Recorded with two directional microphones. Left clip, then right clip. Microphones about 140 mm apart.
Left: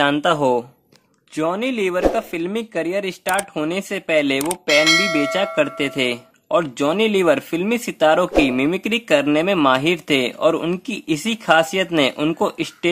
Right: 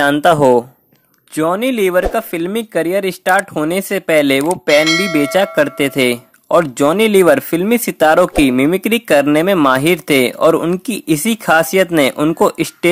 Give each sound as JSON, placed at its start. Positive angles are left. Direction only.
{"t": 0.2, "sound": "speech", "side_deg": -40}
{"t": 4.6, "sound": "speech", "side_deg": 0}
{"t": 5.3, "sound": "speech", "side_deg": -40}